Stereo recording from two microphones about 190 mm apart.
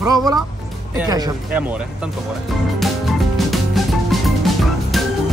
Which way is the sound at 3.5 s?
Centre (ahead or behind).